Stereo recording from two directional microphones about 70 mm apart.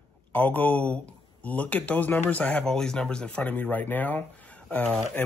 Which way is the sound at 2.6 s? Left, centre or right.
Centre.